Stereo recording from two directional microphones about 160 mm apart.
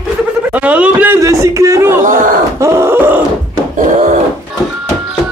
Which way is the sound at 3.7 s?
50° right (ahead or behind).